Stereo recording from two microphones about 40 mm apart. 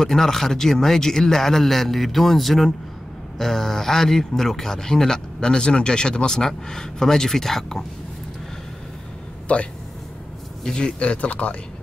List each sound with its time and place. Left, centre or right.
0.0 s a man's voice: centre
10.6 s speech: left